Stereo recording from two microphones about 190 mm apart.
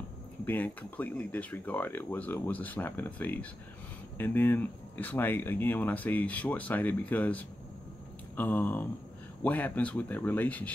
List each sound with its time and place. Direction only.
0.5 s speech: 10° left (ahead or behind)